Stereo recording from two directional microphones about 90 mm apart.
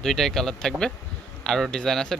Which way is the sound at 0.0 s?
5° left (ahead or behind).